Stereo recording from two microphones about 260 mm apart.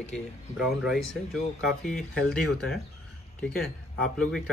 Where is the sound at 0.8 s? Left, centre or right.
Centre.